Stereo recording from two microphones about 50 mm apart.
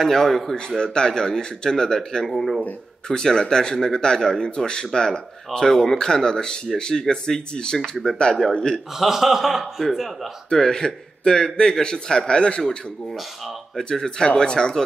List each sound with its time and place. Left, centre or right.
0.0 s a man's voice: centre
0.7 s speech: centre
3.1 s speech: centre
8.9 s a man's voice: centre
10.5 s speech: centre
13.7 s speech: centre